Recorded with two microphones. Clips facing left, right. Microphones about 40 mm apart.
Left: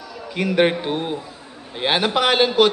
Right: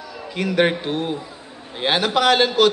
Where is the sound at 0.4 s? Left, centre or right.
Centre.